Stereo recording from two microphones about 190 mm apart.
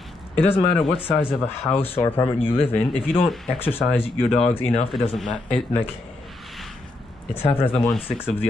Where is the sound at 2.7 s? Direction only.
5° left (ahead or behind).